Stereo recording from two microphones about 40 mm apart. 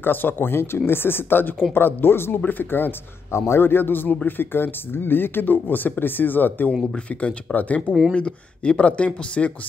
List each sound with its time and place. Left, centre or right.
0.0 s speech: left
2.6 s speech: left
3.4 s speech: left
7.2 s speech: left
8.1 s speech: left